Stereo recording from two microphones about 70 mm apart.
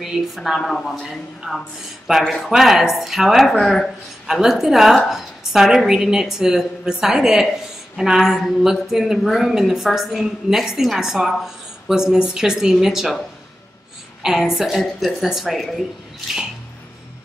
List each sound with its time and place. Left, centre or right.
0.0 s a woman's voice: centre
0.6 s speech: centre
1.0 s a woman's voice: centre
14.2 s a woman's voice: centre